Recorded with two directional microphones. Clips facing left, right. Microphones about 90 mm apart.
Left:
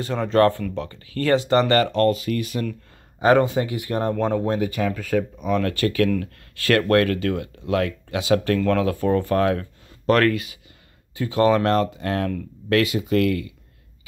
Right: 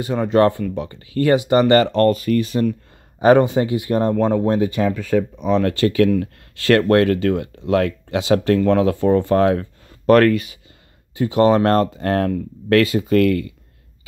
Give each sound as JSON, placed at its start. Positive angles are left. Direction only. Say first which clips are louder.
{"t": 0.0, "sound": "speech", "louder": "right 2 dB", "side_deg": -10}
{"t": 1.7, "sound": "speech", "louder": "right 4 dB", "side_deg": -35}
{"t": 3.2, "sound": "speech", "louder": "right 4 dB", "side_deg": -25}
{"t": 11.6, "sound": "speech", "louder": "right 4 dB", "side_deg": -40}